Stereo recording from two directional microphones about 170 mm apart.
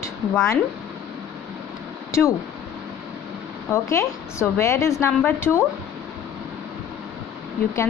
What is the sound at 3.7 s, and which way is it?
A woman's voice, 15° left (ahead or behind).